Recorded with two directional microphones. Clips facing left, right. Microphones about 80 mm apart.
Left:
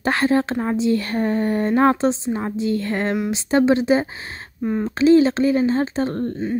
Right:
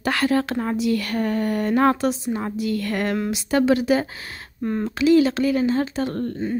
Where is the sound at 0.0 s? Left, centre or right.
Left.